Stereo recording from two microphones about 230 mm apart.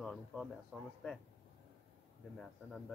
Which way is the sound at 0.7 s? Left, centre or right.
Centre.